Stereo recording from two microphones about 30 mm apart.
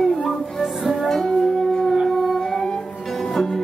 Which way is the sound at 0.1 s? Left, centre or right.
Centre.